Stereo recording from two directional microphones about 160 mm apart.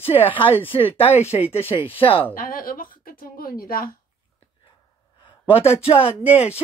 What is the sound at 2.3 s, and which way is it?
A woman's voice, 60° left (ahead or behind).